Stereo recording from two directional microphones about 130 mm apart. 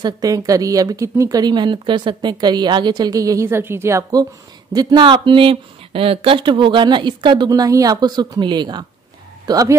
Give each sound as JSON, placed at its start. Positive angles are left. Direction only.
{"t": 0.0, "sound": "speech", "side_deg": -30}